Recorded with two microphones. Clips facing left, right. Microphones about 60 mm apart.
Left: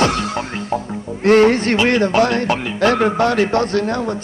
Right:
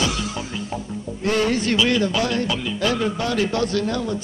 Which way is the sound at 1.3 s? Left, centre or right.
Left.